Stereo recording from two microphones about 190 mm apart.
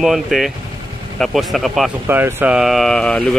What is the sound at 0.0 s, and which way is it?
Speech, centre (ahead or behind).